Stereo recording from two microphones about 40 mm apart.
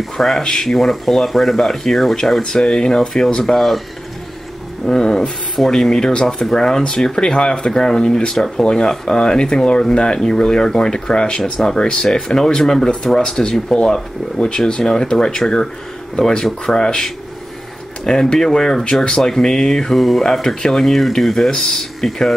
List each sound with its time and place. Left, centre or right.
0.4 s speech: centre
3.5 s speech: centre
4.8 s speech: centre
7.2 s speech: centre
20.0 s speech: centre
21.5 s speech: centre